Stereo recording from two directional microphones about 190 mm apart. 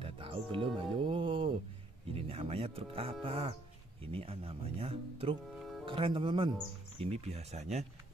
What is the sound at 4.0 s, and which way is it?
Speech, 30° right (ahead or behind).